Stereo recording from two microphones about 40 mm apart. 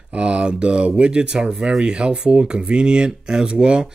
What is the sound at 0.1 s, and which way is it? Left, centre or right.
Speech, right.